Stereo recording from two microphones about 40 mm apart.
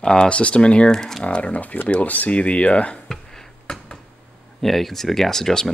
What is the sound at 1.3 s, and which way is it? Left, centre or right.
Speech, left.